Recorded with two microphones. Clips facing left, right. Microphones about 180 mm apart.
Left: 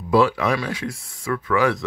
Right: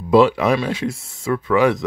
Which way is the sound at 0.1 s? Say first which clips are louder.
Right 4 dB; 20° right (ahead or behind).